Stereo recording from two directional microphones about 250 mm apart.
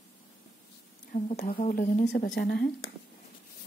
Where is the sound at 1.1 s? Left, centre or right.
Left.